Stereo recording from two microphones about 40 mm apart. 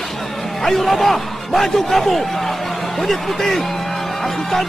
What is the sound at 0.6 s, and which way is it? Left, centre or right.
A man's voice, centre.